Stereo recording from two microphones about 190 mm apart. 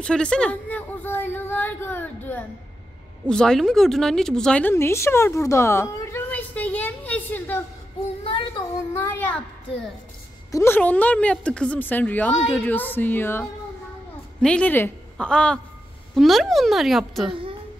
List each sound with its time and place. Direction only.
0.0 s a woman's voice: 5° left (ahead or behind)
8.2 s child singing: 25° left (ahead or behind)
8.9 s a sound: 10° left (ahead or behind)
10.5 s a woman's voice: 15° left (ahead or behind)